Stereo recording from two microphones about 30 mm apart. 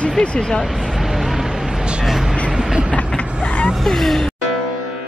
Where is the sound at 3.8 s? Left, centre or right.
Centre.